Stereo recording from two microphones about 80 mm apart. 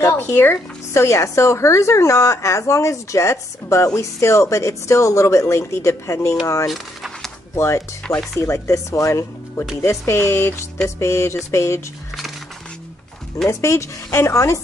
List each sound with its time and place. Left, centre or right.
0.0 s speech: left
1.0 s speech: left
6.4 s a sound: left
6.7 s a sound: centre
7.5 s speech: left
8.0 s chopping: centre
8.4 s speech: left
13.5 s speech: left